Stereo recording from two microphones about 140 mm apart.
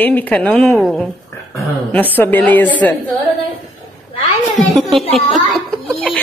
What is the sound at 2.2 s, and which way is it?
Speech, 10° left (ahead or behind).